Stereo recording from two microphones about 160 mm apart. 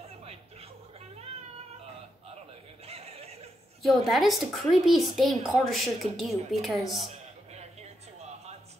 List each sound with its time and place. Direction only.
0.2 s music: 40° right (ahead or behind)
2.9 s chuckle: 40° right (ahead or behind)
3.8 s a woman's voice: centre (ahead or behind)
7.0 s a sound: 40° right (ahead or behind)